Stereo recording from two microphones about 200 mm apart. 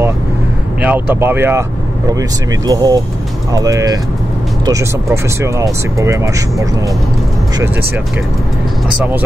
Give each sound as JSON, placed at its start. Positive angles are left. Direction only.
{"t": 0.8, "sound": "speech", "side_deg": -10}
{"t": 2.6, "sound": "speech", "side_deg": -20}